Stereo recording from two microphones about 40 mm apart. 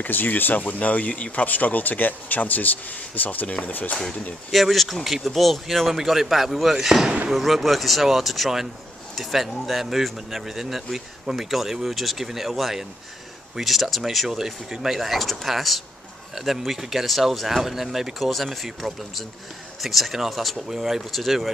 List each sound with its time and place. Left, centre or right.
0.0 s speech: left
4.5 s speech: centre
14.3 s speech: centre